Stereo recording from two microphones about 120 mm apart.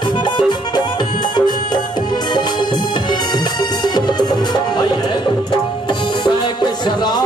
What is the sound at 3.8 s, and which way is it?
Music, 35° left (ahead or behind).